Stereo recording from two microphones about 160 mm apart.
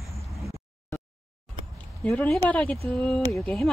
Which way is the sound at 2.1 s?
10° left (ahead or behind).